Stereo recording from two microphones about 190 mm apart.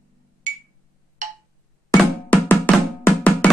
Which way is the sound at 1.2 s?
40° right (ahead or behind).